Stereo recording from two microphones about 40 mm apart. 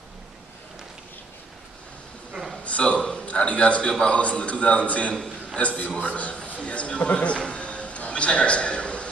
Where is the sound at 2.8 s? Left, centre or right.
Left.